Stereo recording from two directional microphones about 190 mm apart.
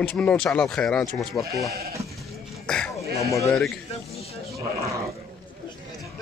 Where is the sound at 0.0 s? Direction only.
5° left (ahead or behind).